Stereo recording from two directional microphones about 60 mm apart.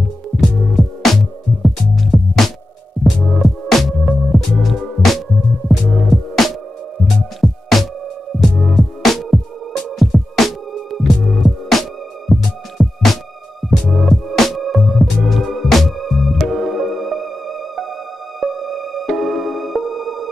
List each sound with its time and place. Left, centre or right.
0.7 s music: centre